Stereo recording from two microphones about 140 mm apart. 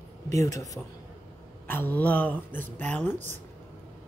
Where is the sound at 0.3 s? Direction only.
25° left (ahead or behind).